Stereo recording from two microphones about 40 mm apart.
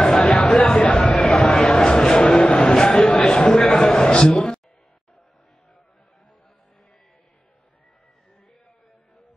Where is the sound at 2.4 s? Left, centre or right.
Left.